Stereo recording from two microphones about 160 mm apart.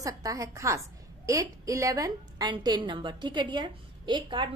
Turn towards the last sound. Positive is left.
turn(degrees=-30)  # may be behind; listen again after turning